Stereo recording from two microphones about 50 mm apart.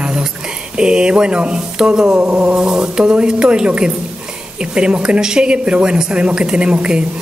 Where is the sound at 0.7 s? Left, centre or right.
Centre.